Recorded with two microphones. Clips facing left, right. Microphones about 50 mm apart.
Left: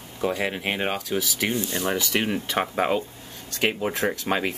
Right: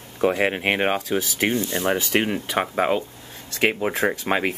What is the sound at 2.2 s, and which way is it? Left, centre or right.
Speech, centre.